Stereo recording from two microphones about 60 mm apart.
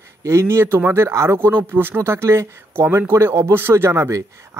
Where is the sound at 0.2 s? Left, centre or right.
Right.